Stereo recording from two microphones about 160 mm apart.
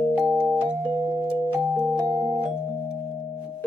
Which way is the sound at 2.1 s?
10° right (ahead or behind).